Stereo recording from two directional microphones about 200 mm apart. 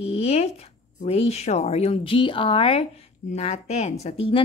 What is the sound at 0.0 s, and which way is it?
A woman's voice, 30° left (ahead or behind).